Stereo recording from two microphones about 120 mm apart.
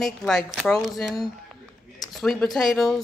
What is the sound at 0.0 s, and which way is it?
Speech, centre (ahead or behind).